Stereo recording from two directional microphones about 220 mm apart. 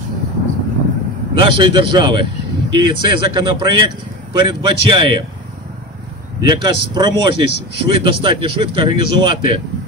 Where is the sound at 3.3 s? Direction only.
20° right (ahead or behind).